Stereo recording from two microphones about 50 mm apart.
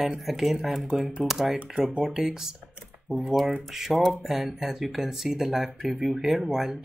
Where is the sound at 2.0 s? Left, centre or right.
Centre.